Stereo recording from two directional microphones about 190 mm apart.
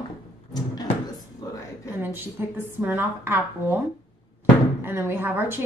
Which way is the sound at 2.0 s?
10° right (ahead or behind).